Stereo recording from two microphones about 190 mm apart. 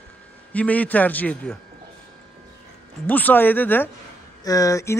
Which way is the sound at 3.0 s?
10° left (ahead or behind).